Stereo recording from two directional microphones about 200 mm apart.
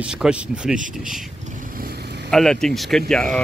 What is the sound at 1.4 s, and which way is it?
Vehicle, 45° right (ahead or behind).